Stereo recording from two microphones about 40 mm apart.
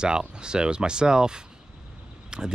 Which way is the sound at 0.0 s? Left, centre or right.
Right.